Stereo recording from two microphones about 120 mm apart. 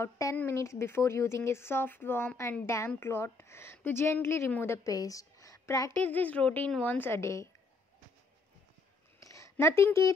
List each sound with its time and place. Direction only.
0.0 s speech: 25° left (ahead or behind)
5.9 s a woman's voice: 15° left (ahead or behind)
9.2 s a sound: 25° left (ahead or behind)